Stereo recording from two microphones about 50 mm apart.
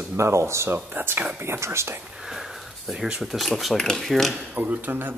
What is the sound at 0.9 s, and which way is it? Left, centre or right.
Speech, right.